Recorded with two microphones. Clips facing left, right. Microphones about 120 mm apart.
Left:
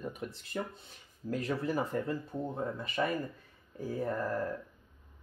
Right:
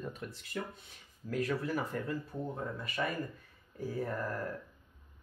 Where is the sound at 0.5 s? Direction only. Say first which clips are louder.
Left 3 dB; 30° left (ahead or behind).